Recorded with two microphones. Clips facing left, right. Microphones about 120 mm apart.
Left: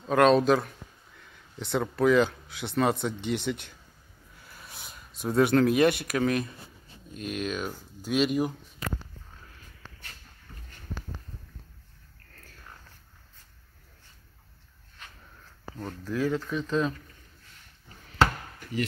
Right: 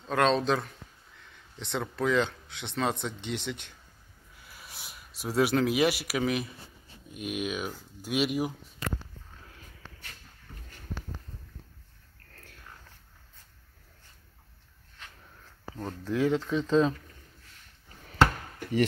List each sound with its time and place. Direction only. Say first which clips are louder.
0.0 s speech: left 5 dB; 5° left (ahead or behind)
15.7 s speech: right 1 dB; 25° right (ahead or behind)